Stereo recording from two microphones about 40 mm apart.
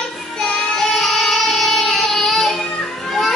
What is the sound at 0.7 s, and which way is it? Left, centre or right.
Music, centre.